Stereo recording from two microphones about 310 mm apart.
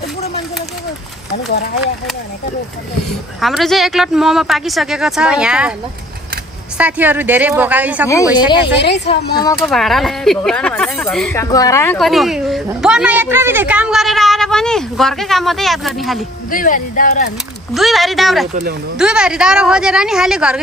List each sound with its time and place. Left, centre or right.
1.5 s speech: left
3.1 s speech: centre
6.8 s speech: centre
8.7 s speech: left
9.6 s speech: centre
16.4 s speech: left
17.7 s speech: centre
18.5 s speech: right
18.9 s speech: centre